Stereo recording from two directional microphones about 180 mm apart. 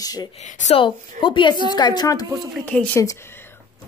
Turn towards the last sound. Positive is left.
turn(degrees=15)  # may be behind; listen again after turning